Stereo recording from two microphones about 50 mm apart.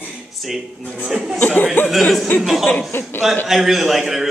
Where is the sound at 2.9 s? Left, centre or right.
Left.